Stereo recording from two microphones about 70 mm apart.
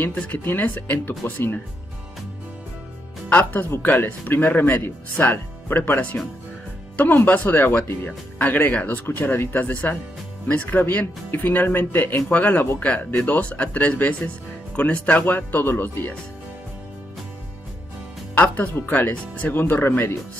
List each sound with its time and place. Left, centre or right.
0.0 s speech: left
3.3 s speech: left
7.2 s speech: left
18.3 s speech: left